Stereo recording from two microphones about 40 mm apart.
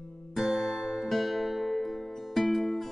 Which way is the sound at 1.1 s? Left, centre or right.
Centre.